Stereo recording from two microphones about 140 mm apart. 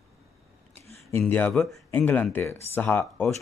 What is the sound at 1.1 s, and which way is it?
Speech, 15° left (ahead or behind).